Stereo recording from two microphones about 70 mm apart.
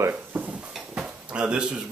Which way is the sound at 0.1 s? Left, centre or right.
Right.